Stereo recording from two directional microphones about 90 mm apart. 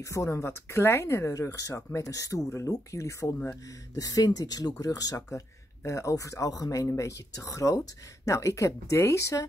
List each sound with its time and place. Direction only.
0.0 s speech: 30° left (ahead or behind)